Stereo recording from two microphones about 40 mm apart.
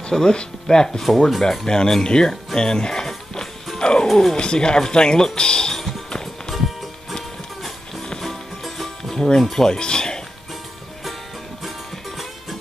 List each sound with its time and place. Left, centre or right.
0.1 s speech: centre
3.8 s music: left
4.1 s speech: centre
4.4 s speech: left
8.2 s music: centre
9.4 s speech: centre
9.7 s speech: left